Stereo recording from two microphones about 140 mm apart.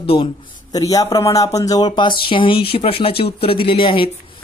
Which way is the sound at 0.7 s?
25° left (ahead or behind).